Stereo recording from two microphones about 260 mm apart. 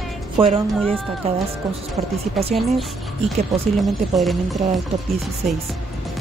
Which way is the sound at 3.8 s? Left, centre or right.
Centre.